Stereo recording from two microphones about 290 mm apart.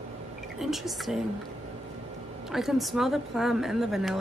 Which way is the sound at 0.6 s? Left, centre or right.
Centre.